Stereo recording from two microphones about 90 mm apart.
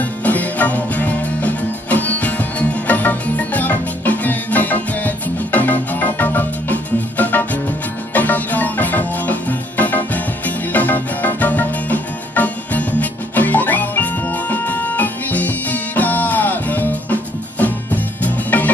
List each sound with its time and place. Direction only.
0.0 s music: 15° left (ahead or behind)